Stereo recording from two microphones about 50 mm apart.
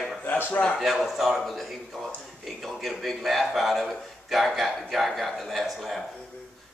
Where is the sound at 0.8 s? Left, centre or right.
Centre.